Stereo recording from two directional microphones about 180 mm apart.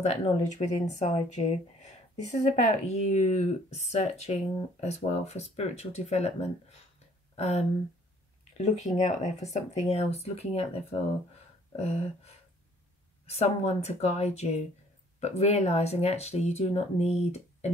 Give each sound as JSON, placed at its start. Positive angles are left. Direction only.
{"t": 0.0, "sound": "speech", "side_deg": 40}
{"t": 13.3, "sound": "speech", "side_deg": 35}